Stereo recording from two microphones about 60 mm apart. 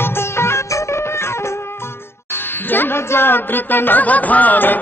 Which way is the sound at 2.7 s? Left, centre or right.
Left.